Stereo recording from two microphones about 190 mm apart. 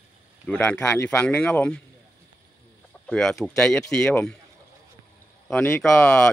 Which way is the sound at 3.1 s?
Centre (ahead or behind).